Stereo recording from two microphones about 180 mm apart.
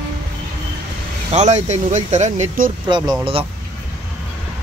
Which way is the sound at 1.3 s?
40° right (ahead or behind).